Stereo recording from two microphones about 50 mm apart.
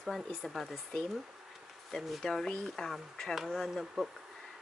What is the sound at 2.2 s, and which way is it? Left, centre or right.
Speech, centre.